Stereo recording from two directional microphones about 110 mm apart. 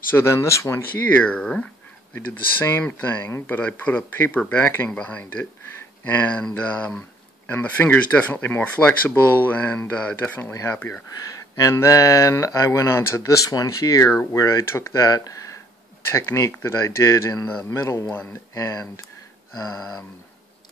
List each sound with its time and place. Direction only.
0.1 s speech: 25° left (ahead or behind); by 1.7 s 10° left (ahead or behind)
2.1 s speech: 20° left (ahead or behind)
15.0 s speech: 35° left (ahead or behind)
19.8 s speech: 10° left (ahead or behind)